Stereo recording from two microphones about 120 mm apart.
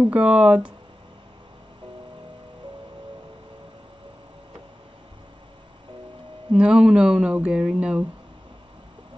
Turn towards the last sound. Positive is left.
turn(degrees=-10)  # may be behind; listen again after turning